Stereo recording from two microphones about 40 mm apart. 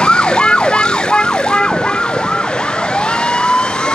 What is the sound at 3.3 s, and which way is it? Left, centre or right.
Emergency vehicle, left.